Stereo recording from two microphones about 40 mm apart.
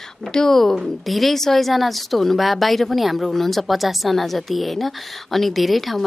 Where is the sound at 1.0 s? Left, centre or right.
Centre.